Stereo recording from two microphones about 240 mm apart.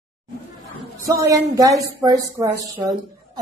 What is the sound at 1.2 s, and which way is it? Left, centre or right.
Speech, centre.